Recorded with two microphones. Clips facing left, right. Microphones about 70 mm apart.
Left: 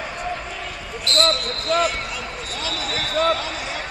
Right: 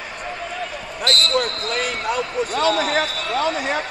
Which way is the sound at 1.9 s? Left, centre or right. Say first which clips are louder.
Right 5 dB; right.